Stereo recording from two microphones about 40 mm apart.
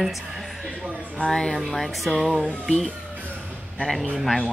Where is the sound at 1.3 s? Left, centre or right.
Centre.